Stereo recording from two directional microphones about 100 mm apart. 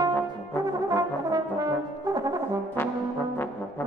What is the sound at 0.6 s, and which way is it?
Brass instrument, 35° right (ahead or behind).